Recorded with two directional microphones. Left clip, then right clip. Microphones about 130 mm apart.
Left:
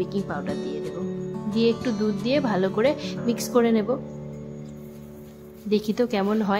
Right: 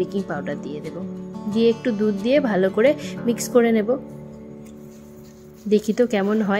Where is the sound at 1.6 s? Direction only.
20° right (ahead or behind).